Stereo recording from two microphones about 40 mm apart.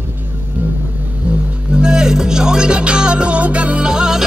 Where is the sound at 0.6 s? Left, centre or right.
Right.